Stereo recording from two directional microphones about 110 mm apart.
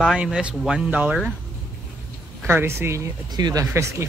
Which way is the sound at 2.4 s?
20° right (ahead or behind).